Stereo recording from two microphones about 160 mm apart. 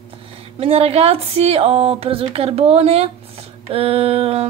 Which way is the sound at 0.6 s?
40° right (ahead or behind).